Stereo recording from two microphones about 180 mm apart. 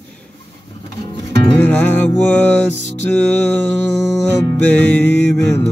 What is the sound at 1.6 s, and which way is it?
Music, 10° left (ahead or behind).